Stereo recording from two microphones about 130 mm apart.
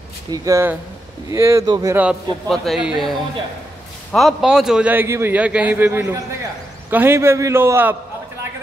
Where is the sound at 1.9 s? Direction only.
10° right (ahead or behind).